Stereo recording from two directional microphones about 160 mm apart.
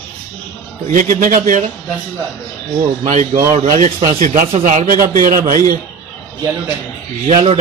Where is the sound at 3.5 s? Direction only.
45° right (ahead or behind).